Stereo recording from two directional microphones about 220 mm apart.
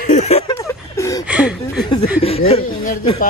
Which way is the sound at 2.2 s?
25° left (ahead or behind).